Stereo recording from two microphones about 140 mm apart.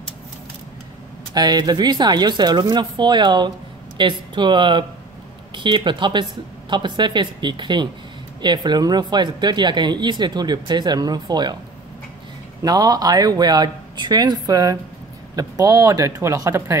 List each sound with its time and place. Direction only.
1.3 s speech: 30° right (ahead or behind)
12.6 s speech: 25° right (ahead or behind)